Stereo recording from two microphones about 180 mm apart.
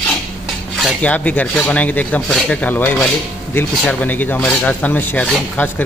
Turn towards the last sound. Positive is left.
turn(degrees=10)  # may be behind; listen again after turning